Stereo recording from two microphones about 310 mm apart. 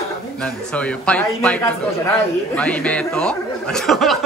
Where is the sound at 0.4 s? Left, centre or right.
Centre.